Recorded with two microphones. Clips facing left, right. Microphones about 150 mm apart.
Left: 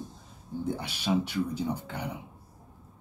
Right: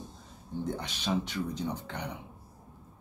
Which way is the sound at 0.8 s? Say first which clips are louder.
Left 6 dB; 10° left (ahead or behind).